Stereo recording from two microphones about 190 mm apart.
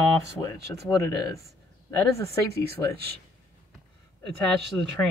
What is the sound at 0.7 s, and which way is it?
Speech, 15° left (ahead or behind).